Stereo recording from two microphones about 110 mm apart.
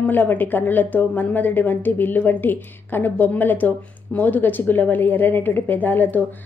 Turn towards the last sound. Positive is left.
turn(degrees=15)  # may be behind; listen again after turning